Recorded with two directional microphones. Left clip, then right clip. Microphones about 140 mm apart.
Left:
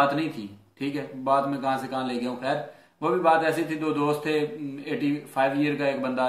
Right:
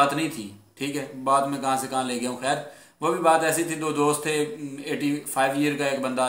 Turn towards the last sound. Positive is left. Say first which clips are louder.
# right 1 dB
turn(degrees=-20)  # may be behind; listen again after turning